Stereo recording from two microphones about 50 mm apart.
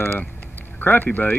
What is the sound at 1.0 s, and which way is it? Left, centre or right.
Speech, left.